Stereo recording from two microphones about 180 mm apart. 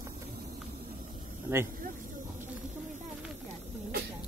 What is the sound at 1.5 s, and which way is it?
Speech, 15° right (ahead or behind).